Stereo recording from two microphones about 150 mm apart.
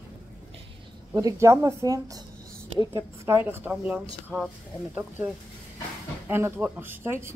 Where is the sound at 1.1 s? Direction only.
20° right (ahead or behind).